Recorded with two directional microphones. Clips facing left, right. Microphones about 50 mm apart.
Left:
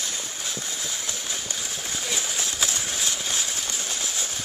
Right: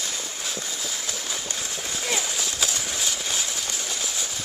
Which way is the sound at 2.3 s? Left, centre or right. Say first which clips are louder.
Even; centre.